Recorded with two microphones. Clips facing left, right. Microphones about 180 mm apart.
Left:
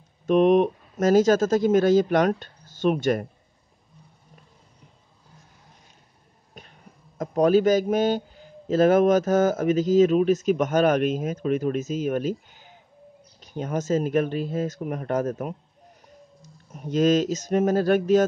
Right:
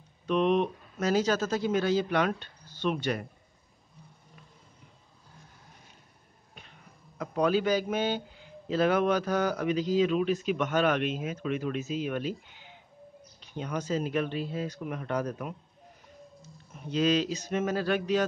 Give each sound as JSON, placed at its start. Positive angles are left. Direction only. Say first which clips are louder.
{"t": 0.3, "sound": "a man's voice", "louder": "left 8 dB", "side_deg": 45}
{"t": 7.2, "sound": "a man's voice", "louder": "left 7 dB", "side_deg": 45}
{"t": 16.7, "sound": "a man's voice", "louder": "left 6 dB", "side_deg": 45}